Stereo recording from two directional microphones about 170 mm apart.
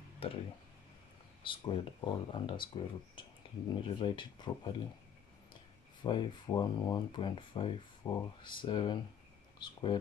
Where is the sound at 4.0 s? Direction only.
25° left (ahead or behind).